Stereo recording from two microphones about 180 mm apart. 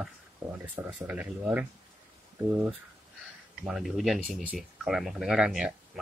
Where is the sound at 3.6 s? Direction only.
Centre (ahead or behind).